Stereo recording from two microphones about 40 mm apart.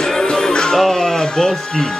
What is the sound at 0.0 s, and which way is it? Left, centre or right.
Music, centre.